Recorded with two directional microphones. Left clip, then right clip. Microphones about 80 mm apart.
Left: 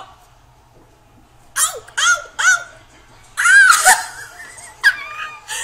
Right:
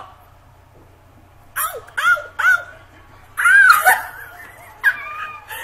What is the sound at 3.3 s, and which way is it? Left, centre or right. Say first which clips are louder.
Music: left 1 dB; left.